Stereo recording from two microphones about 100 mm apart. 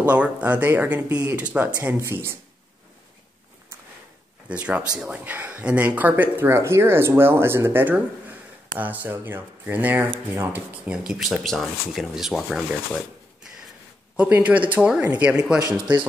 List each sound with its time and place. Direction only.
0.0 s speech: 15° right (ahead or behind)
4.5 s speech: 15° right (ahead or behind)
14.1 s speech: 15° right (ahead or behind)